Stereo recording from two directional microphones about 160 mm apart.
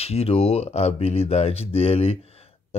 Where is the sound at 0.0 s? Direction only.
40° left (ahead or behind).